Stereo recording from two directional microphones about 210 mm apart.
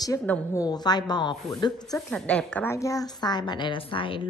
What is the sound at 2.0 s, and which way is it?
A woman's voice, 5° left (ahead or behind).